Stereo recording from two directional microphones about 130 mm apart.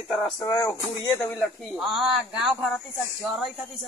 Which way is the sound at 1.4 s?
Centre (ahead or behind).